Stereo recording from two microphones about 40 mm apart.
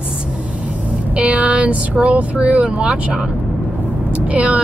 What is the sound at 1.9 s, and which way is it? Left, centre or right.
Speech, right.